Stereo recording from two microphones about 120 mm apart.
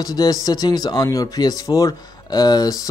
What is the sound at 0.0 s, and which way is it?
Speech, 30° left (ahead or behind).